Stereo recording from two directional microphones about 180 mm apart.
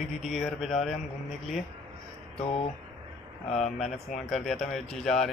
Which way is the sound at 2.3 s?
30° left (ahead or behind).